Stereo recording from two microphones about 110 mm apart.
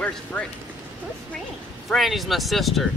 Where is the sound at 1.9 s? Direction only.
Centre (ahead or behind).